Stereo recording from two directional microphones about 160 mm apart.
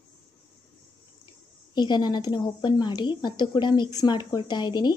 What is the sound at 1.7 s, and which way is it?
A woman's voice, 25° left (ahead or behind).